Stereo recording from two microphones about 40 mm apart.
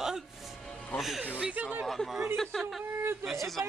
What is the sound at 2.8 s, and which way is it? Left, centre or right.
Speech, right.